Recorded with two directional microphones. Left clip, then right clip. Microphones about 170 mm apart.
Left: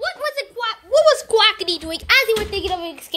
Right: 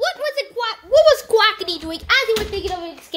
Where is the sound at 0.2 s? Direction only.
20° right (ahead or behind).